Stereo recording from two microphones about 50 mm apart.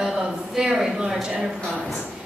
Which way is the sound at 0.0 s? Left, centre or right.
Centre.